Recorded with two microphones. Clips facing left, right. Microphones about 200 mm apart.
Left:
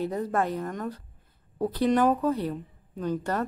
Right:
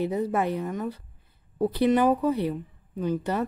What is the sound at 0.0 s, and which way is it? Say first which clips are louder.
A woman's voice: right 2 dB; 10° right (ahead or behind).